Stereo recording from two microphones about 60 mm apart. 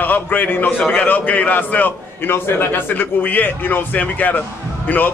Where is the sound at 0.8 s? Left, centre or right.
Centre.